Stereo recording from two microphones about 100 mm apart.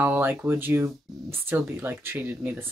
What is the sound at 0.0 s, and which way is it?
Speech, 20° right (ahead or behind).